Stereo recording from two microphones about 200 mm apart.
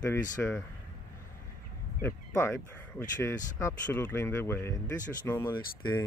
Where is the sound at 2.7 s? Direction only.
10° left (ahead or behind).